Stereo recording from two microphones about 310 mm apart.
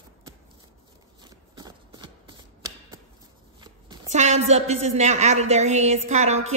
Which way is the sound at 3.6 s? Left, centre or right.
Centre.